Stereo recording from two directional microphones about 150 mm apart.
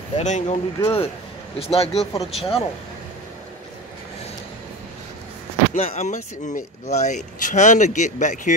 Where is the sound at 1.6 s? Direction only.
40° left (ahead or behind).